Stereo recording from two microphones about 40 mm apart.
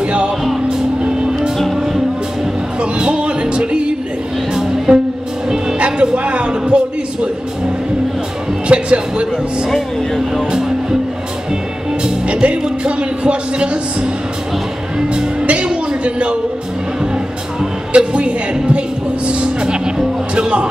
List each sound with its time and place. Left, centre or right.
0.0 s music: right
0.7 s vehicle: right
2.8 s music: right
5.8 s music: right
8.6 s music: right
9.7 s speech: centre
10.5 s music: centre
12.0 s music: right
12.6 s a sound: right
15.4 s a sound: right
17.9 s music: right